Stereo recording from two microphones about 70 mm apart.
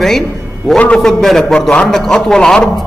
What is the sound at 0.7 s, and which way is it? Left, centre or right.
Speech, centre.